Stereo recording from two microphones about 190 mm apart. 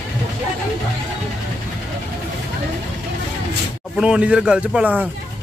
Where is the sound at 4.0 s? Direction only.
5° right (ahead or behind).